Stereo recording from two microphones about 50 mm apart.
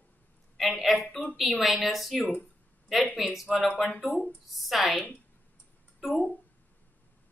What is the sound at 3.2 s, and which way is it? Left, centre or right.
Speech, centre.